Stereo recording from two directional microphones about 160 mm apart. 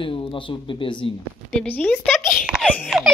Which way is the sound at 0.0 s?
30° left (ahead or behind).